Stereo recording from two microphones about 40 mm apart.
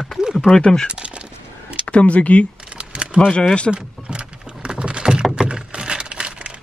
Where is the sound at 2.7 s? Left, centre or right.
Right.